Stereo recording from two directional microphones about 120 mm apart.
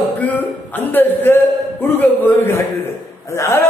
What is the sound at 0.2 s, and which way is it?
A man's voice, 15° left (ahead or behind).